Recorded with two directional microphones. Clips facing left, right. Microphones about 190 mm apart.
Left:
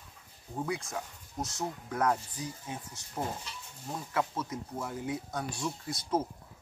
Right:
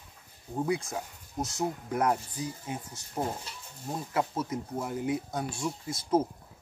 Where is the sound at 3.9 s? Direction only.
20° right (ahead or behind).